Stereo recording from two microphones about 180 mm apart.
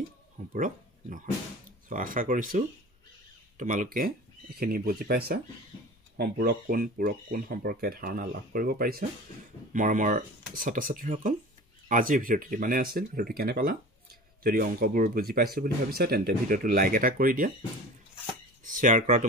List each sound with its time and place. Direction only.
0.5 s a sound: 45° right (ahead or behind)
1.9 s speech: 50° right (ahead or behind)
18.6 s speech: 45° right (ahead or behind)